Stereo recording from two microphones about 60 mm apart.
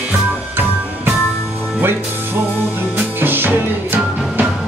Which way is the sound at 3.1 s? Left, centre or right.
Right.